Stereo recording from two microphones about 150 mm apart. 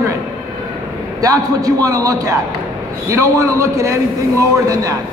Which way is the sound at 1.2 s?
25° right (ahead or behind).